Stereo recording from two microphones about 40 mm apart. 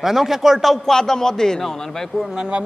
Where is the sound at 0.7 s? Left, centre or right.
Centre.